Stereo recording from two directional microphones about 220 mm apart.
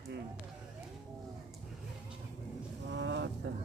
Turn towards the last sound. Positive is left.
turn(degrees=-55)  # may be behind; listen again after turning